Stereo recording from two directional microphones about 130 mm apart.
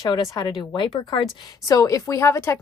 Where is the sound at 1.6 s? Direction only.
25° left (ahead or behind).